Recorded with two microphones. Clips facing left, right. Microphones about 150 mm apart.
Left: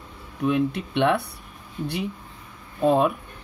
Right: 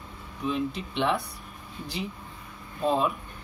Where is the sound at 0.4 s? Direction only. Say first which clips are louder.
Left 6 dB; 60° left (ahead or behind).